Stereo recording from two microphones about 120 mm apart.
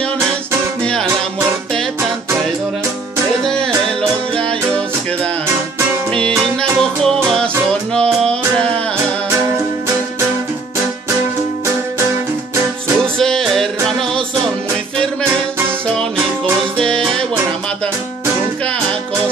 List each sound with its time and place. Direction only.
3.4 s music: 5° left (ahead or behind)
5.5 s music: 20° right (ahead or behind)
6.8 s music: 5° left (ahead or behind)
12.5 s music: 20° right (ahead or behind)
13.2 s music: 5° left (ahead or behind)